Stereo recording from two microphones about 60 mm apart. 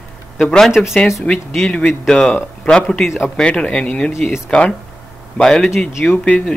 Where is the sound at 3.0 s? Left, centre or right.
Centre.